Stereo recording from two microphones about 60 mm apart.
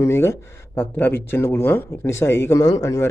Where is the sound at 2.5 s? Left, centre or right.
Left.